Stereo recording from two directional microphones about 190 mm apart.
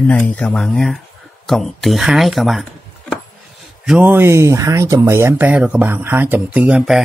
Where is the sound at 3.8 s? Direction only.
5° right (ahead or behind).